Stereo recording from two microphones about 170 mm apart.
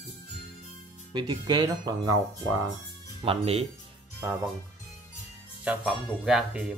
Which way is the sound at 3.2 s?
35° right (ahead or behind).